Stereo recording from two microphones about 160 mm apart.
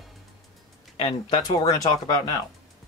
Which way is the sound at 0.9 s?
30° left (ahead or behind).